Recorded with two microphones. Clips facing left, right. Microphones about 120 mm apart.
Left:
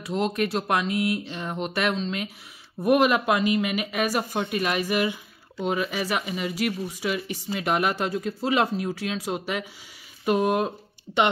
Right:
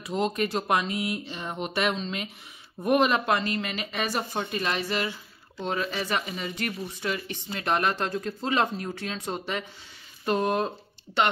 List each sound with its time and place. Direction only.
0.0 s speech: centre (ahead or behind)